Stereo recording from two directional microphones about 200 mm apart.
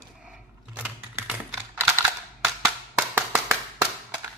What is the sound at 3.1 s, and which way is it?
Clapping, 10° right (ahead or behind).